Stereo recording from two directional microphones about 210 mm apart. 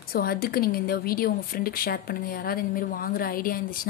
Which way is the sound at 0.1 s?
45° left (ahead or behind).